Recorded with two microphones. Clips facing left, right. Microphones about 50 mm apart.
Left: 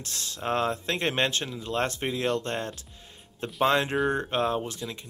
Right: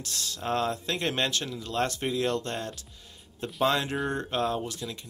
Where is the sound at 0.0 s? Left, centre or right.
Left.